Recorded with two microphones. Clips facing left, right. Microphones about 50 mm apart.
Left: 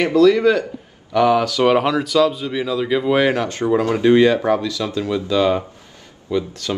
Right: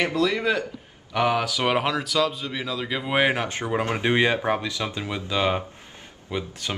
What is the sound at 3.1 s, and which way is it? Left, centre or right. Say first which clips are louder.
Speech: left 3 dB; centre.